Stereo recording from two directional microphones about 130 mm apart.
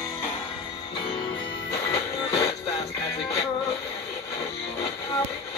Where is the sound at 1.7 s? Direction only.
25° left (ahead or behind).